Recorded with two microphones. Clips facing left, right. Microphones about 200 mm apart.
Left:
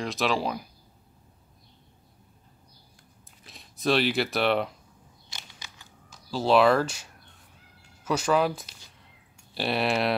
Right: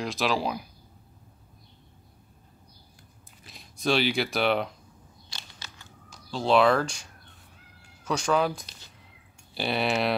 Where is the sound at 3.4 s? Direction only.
Centre (ahead or behind).